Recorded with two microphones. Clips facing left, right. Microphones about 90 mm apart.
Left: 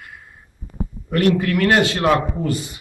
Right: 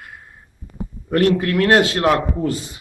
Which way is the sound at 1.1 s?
40° right (ahead or behind).